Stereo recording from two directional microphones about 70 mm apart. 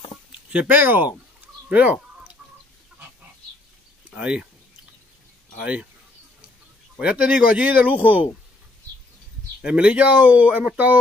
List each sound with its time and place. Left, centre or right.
0.5 s speech: centre
0.7 s speech: right
1.7 s chicken: right
4.2 s speech: centre
5.6 s speech: centre
7.0 s speech: centre
9.7 s speech: centre